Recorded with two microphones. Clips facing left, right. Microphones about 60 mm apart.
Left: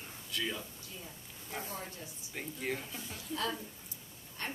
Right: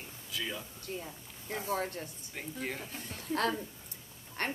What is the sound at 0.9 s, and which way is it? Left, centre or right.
A woman's voice, right.